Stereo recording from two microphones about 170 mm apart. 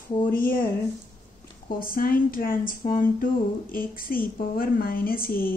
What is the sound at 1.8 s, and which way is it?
A woman's voice, 60° left (ahead or behind).